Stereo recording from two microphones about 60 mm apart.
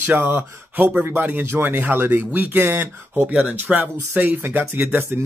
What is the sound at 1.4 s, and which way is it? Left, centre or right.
Speech, right.